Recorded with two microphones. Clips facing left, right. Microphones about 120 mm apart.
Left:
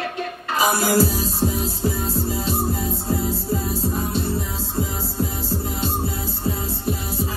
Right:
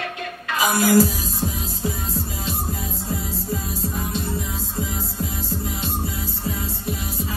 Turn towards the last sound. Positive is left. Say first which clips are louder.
# left 3 dB
turn(degrees=35)  # may be behind; listen again after turning